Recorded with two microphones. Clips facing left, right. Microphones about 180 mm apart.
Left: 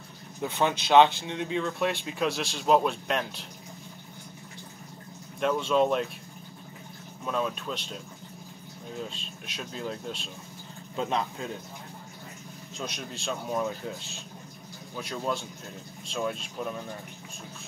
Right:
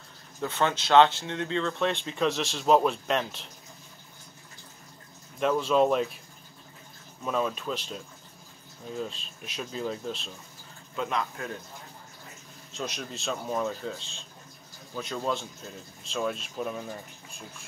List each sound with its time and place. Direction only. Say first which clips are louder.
0.4 s speech: even; 15° left (ahead or behind)
5.4 s speech: right 1 dB; centre (ahead or behind)
7.2 s speech: right 1 dB; centre (ahead or behind)
9.1 s speech: even; centre (ahead or behind)
11.0 s speech: left 1 dB; 30° left (ahead or behind)
12.7 s speech: right 2 dB; centre (ahead or behind)